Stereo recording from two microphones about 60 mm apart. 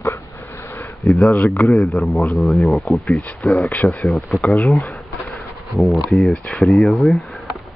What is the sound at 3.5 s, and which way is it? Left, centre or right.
Speech, left.